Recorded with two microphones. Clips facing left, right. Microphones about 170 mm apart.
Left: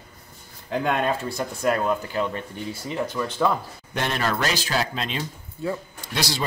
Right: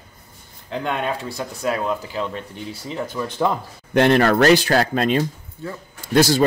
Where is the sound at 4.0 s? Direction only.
65° right (ahead or behind).